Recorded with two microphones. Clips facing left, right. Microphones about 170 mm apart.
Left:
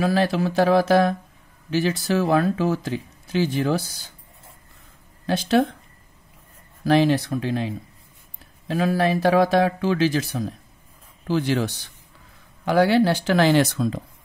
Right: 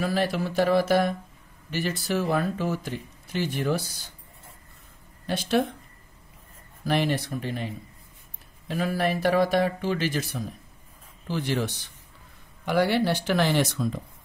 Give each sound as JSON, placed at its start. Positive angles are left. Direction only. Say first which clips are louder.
{"t": 0.0, "sound": "speech", "louder": "left 5 dB", "side_deg": 90}
{"t": 5.4, "sound": "speech", "louder": "left 4 dB", "side_deg": 90}
{"t": 6.8, "sound": "speech", "louder": "left 7 dB", "side_deg": 90}
{"t": 12.6, "sound": "speech", "louder": "left 5 dB", "side_deg": 90}